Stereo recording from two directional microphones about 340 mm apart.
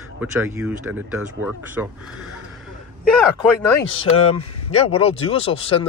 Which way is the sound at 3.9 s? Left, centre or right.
Centre.